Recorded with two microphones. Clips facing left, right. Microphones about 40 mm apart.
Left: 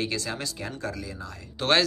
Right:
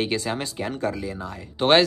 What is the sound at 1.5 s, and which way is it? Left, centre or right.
Speech, centre.